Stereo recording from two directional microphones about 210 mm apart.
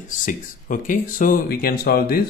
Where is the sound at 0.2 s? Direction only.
40° left (ahead or behind).